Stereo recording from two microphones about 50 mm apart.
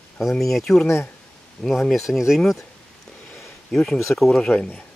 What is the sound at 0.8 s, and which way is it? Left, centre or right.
Speech, left.